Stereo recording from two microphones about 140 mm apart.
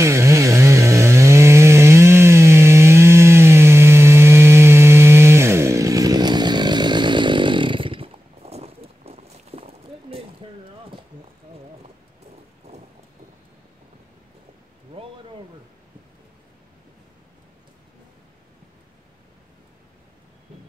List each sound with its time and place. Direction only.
0.0 s chainsaw: 20° right (ahead or behind); by 11.0 s 40° right (ahead or behind)